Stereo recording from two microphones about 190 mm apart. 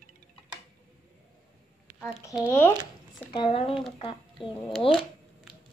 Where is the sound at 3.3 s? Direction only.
25° left (ahead or behind).